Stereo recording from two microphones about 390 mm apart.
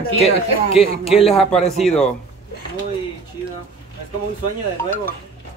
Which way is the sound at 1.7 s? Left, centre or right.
Centre.